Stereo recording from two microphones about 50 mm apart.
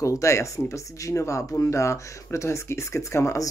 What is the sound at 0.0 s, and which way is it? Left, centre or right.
Speech, left.